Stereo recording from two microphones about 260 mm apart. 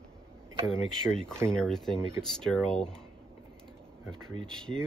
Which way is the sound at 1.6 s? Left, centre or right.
Centre.